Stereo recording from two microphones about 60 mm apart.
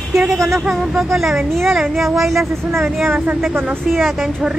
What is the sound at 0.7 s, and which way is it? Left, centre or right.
Speech, centre.